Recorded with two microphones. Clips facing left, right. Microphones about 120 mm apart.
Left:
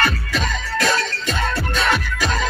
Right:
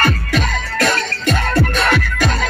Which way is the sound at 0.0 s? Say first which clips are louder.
Right 4 dB; 60° right (ahead or behind).